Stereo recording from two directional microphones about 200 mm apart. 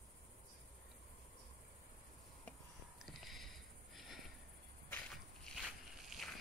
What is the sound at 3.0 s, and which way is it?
Sniff, centre (ahead or behind).